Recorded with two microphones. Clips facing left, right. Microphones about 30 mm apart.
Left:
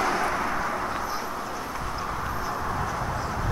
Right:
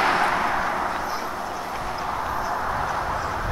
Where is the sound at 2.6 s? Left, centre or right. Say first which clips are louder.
Right 4 dB; right.